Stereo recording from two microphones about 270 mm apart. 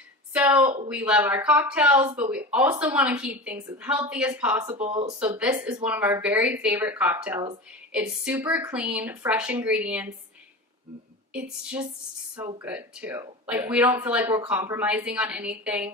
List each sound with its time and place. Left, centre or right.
0.3 s speech: centre
4.7 s speech: right
5.0 s speech: centre
11.3 s speech: centre